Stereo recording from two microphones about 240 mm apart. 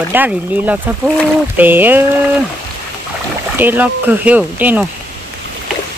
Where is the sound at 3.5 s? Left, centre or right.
Centre.